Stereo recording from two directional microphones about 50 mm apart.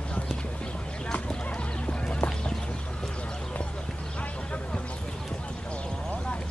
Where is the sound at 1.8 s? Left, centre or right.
Left.